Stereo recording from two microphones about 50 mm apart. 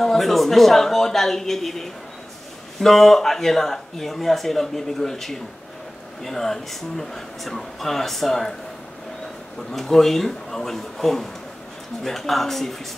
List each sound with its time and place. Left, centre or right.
0.0 s speech: centre
9.6 s speech: centre